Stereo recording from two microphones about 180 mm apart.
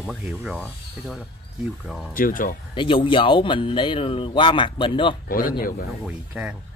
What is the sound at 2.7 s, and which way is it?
Speech, 30° left (ahead or behind).